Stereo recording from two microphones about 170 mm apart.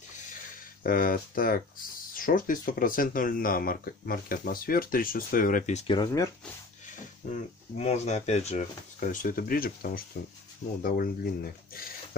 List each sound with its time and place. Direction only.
0.8 s speech: 55° left (ahead or behind)
5.9 s speech: 20° left (ahead or behind)
7.2 s speech: 50° left (ahead or behind)